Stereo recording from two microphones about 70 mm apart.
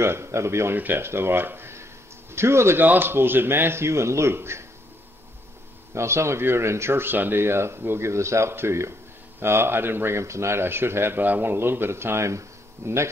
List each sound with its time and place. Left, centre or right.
0.0 s speech: right
0.7 s speech: right
5.9 s speech: right